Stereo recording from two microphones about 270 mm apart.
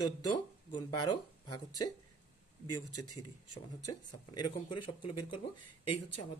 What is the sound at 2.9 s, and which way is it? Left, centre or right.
Speech, left.